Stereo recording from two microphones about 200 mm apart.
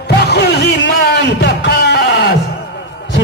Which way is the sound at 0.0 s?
55° left (ahead or behind).